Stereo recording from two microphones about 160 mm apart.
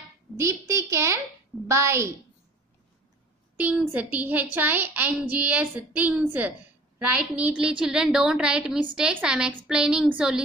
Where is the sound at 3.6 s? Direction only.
10° right (ahead or behind).